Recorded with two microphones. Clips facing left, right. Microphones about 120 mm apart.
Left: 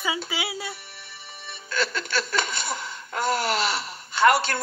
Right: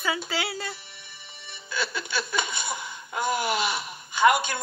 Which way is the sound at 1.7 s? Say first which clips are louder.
Left 3 dB; 15° right (ahead or behind).